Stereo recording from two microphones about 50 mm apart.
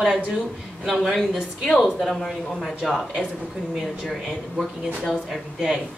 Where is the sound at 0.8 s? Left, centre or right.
Centre.